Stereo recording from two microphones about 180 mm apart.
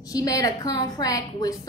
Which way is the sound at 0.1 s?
20° left (ahead or behind).